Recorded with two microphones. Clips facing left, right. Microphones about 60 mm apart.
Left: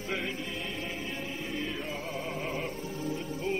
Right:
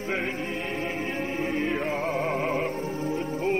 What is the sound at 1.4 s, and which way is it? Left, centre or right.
Music, right.